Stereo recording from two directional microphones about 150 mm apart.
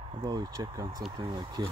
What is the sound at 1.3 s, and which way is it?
Speech, 30° right (ahead or behind).